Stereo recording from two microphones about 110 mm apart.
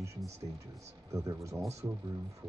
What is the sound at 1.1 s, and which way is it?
Speech, 30° right (ahead or behind).